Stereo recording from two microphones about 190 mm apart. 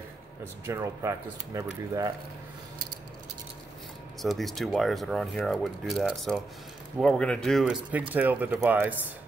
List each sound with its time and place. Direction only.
0.7 s speech: 15° right (ahead or behind)
4.2 s speech: centre (ahead or behind)